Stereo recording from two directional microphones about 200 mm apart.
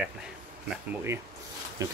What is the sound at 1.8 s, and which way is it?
Speech, 15° right (ahead or behind).